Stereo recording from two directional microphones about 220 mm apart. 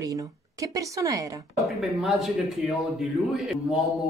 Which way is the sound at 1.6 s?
Centre (ahead or behind).